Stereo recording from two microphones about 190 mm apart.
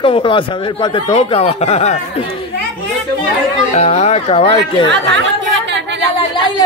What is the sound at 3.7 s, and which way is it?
Speech, 35° left (ahead or behind).